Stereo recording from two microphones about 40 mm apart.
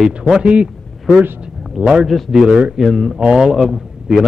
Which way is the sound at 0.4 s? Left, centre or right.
Right.